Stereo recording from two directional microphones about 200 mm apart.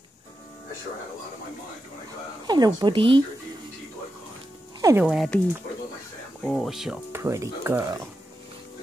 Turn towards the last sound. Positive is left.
turn(degrees=-15)  # may be behind; listen again after turning